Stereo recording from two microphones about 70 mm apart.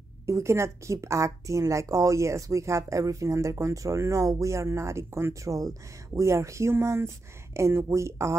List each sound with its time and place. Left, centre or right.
0.3 s speech: right